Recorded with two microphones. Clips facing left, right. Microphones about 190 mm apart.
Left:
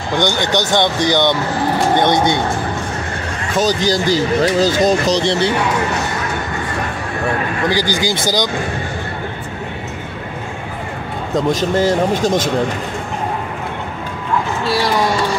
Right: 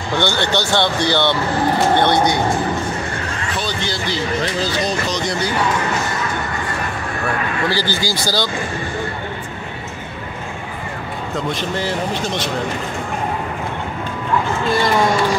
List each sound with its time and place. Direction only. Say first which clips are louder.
0.2 s speech: left 2 dB; 15° left (ahead or behind)
3.5 s speech: left 11 dB; 40° left (ahead or behind)
7.6 s speech: left 4 dB; 15° left (ahead or behind)
11.3 s speech: left 8 dB; 45° left (ahead or behind)